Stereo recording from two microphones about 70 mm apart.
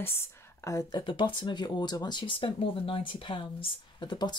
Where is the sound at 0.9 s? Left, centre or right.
Left.